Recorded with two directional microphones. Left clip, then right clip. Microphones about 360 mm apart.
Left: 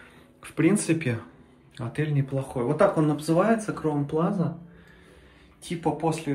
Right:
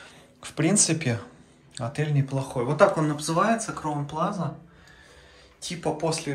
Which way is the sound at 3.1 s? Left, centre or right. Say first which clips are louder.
Left 2 dB; right.